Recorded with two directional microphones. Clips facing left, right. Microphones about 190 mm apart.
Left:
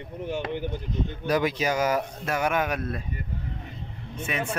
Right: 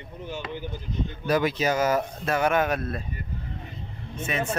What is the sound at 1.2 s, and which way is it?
Speech, 15° left (ahead or behind).